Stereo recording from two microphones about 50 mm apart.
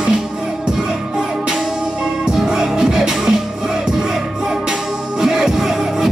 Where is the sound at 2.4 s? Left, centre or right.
Centre.